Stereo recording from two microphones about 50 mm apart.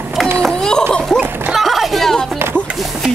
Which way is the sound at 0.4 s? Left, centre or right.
Centre.